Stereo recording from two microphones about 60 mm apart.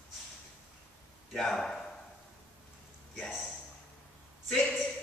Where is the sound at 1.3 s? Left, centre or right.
Centre.